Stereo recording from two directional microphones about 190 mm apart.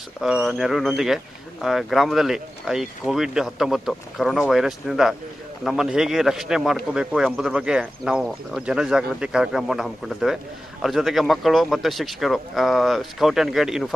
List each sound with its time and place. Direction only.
0.2 s speech: centre (ahead or behind)